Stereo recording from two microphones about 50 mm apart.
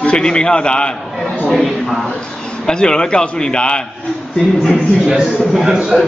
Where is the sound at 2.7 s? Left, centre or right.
Centre.